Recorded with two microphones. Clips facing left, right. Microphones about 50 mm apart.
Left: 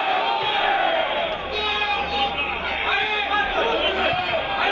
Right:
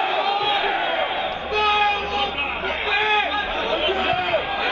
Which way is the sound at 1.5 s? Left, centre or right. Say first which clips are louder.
Right 5 dB; right.